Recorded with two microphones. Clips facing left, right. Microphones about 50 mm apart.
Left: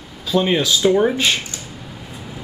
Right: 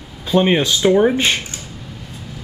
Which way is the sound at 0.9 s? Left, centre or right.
Centre.